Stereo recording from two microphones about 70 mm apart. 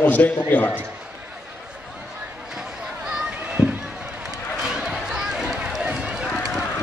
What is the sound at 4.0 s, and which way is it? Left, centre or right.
Run, centre.